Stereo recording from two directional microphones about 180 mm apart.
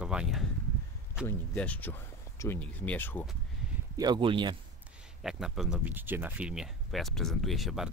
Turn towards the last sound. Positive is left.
turn(degrees=0)  # may be behind; listen again after turning